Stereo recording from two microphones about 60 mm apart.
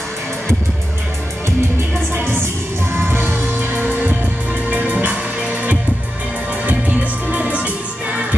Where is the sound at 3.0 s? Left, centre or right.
Right.